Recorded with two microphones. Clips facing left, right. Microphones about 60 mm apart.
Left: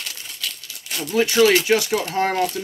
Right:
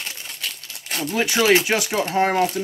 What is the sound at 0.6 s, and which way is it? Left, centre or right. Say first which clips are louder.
Crumpling: right 2 dB; right.